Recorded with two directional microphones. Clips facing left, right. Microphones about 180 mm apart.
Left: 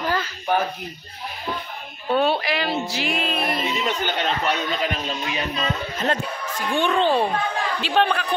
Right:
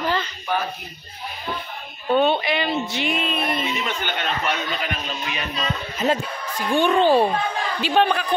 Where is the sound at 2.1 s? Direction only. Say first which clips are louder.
Right 2 dB; centre (ahead or behind).